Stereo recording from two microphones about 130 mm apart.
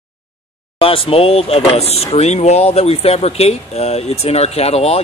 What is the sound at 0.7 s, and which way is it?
Speech, 45° left (ahead or behind).